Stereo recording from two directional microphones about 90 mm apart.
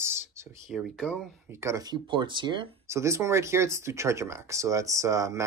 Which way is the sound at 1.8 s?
55° right (ahead or behind).